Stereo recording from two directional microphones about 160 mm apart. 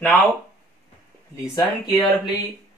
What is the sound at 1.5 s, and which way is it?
Speech, 25° left (ahead or behind).